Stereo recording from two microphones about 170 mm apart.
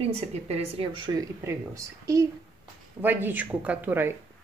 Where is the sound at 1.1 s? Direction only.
20° right (ahead or behind).